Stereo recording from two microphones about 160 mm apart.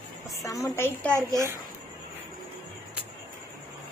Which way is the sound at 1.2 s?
20° right (ahead or behind).